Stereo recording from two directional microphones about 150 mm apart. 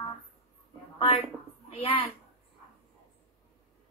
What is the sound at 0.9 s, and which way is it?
A woman's voice, 40° left (ahead or behind).